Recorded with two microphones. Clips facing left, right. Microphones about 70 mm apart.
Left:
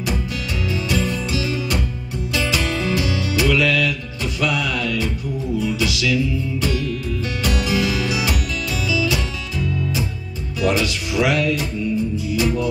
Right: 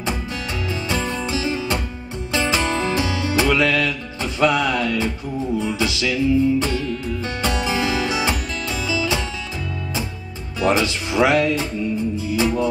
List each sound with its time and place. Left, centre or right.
0.7 s music: right
10.6 s speech: right
12.2 s music: right